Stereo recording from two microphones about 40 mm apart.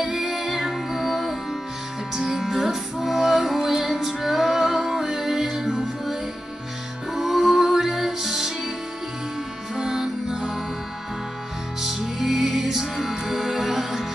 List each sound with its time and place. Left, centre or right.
0.0 s music: centre
7.2 s music: centre
9.8 s music: centre
11.8 s music: centre